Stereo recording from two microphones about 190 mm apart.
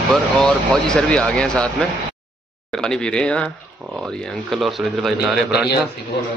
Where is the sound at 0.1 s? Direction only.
5° left (ahead or behind).